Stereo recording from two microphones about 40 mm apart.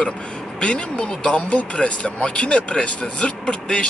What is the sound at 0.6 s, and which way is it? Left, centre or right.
Speech, left.